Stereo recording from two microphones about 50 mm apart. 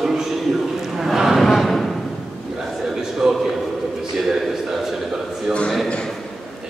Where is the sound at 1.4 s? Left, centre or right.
Centre.